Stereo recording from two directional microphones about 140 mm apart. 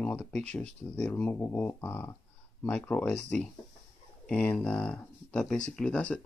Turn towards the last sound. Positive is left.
turn(degrees=5)  # may be behind; listen again after turning